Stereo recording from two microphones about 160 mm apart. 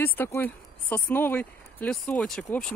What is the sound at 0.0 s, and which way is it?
Speech, 15° left (ahead or behind).